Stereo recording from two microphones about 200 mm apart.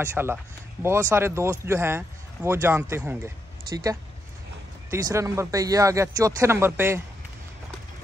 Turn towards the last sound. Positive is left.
turn(degrees=-10)  # may be behind; listen again after turning